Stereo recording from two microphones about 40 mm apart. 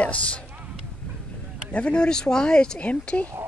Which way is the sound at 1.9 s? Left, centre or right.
Centre.